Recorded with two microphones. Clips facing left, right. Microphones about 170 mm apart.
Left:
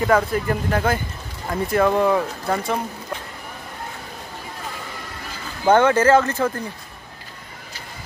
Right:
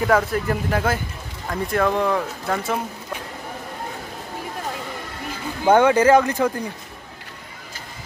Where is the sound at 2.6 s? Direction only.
5° right (ahead or behind).